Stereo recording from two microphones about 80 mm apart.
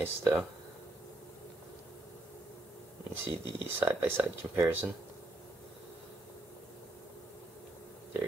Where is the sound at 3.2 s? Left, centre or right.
Right.